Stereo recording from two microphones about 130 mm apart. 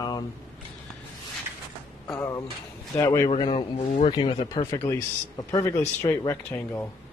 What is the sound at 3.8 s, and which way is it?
Speech, 60° left (ahead or behind).